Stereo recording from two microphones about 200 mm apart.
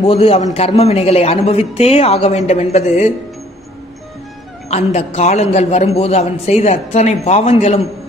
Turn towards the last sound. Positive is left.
turn(degrees=30)  # may be behind; listen again after turning